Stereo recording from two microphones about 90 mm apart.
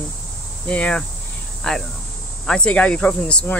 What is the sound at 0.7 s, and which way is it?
Speech, 10° left (ahead or behind).